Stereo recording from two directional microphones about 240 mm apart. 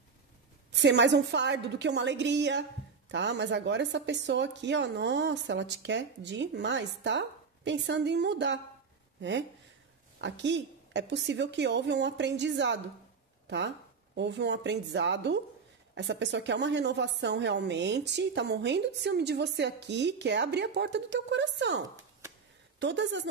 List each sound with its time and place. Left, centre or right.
0.7 s speech: right
10.2 s speech: right